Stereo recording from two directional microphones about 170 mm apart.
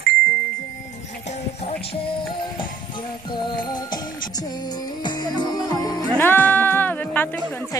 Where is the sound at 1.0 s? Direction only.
40° left (ahead or behind); by 6.1 s 20° left (ahead or behind).